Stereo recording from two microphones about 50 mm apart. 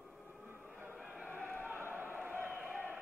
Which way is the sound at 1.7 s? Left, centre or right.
Right.